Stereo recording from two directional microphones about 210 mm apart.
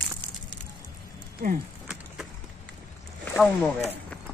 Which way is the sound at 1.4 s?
40° right (ahead or behind).